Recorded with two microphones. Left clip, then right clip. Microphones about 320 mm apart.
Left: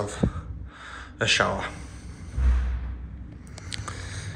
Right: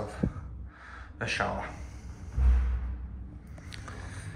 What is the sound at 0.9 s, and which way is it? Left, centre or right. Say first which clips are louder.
Speech: left 9 dB; centre.